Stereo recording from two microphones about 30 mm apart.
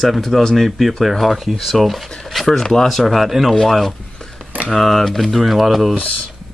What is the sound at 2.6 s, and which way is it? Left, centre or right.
Speech, centre.